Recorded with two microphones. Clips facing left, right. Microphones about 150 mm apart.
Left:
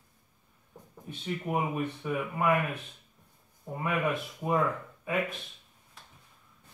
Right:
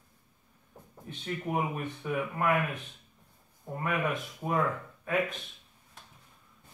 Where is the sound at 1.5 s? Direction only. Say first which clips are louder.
Even; 10° left (ahead or behind).